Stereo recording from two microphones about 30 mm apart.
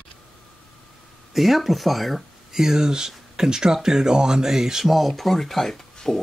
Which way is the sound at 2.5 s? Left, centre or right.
Centre.